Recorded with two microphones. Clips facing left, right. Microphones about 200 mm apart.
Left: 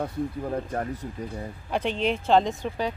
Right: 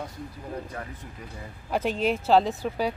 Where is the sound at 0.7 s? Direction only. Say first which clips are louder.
Left 8 dB; 40° left (ahead or behind).